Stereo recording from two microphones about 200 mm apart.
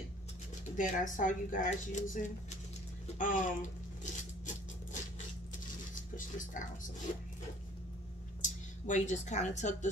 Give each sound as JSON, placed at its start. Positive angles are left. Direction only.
{"t": 0.7, "sound": "speech", "side_deg": 40}
{"t": 6.1, "sound": "a sound", "side_deg": 40}
{"t": 8.4, "sound": "speech", "side_deg": 40}